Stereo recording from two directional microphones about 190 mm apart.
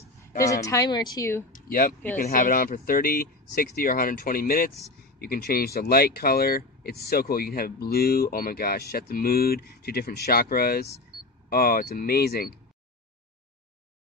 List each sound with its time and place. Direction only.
0.7 s a woman's voice: 20° left (ahead or behind)
1.5 s speech: 50° left (ahead or behind)